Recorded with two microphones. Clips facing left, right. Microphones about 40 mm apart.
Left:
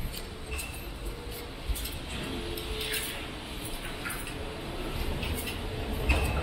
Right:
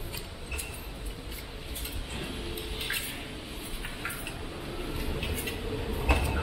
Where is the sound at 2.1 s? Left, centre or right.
Centre.